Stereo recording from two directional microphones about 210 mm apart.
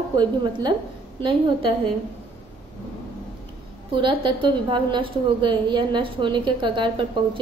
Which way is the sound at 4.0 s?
25° right (ahead or behind).